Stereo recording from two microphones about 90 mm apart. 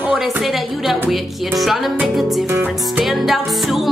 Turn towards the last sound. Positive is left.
turn(degrees=0)  # may be behind; listen again after turning